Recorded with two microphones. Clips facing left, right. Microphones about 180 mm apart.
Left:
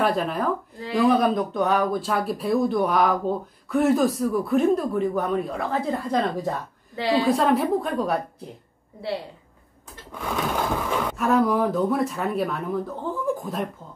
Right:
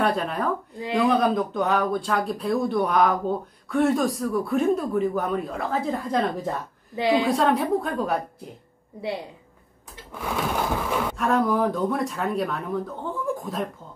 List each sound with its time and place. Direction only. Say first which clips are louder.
0.0 s speech: left 1 dB; centre (ahead or behind)
7.0 s a woman's voice: right 1 dB; 15° right (ahead or behind)
7.2 s speech: left 1 dB; centre (ahead or behind)
10.1 s speech: even; 5° right (ahead or behind)